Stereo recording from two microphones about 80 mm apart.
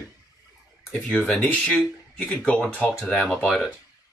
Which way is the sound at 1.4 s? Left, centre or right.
Centre.